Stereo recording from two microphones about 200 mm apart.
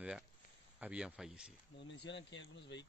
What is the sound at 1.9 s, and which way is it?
Speech, 65° left (ahead or behind).